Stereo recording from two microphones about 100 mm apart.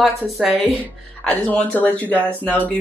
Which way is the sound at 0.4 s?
Centre (ahead or behind).